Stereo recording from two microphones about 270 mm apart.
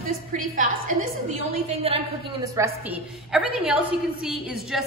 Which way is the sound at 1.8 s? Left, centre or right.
Right.